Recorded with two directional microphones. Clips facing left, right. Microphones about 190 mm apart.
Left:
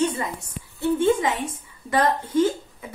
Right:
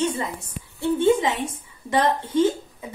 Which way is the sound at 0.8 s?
20° right (ahead or behind).